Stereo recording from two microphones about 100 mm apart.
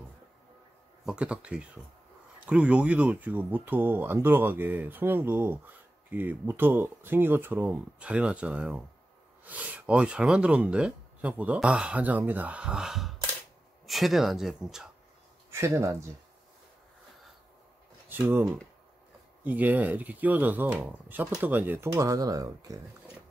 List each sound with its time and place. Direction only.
1.0 s speech: 10° right (ahead or behind)
15.5 s speech: 25° right (ahead or behind)
18.0 s speech: 20° right (ahead or behind)
19.4 s speech: 15° right (ahead or behind)
21.9 s speech: 35° right (ahead or behind)